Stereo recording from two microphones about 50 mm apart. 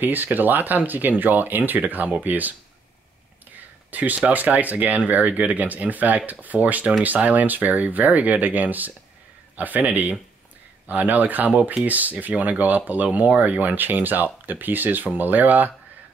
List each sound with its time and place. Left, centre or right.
0.0 s speech: right
3.9 s speech: right